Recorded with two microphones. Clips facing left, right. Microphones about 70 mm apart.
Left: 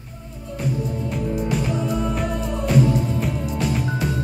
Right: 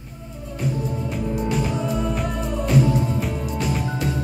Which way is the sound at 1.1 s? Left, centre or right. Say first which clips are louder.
Left 1 dB; centre.